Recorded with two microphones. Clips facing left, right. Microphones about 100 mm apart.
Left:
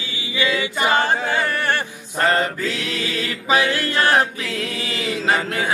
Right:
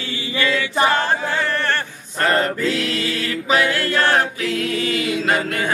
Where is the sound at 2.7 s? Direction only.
20° left (ahead or behind).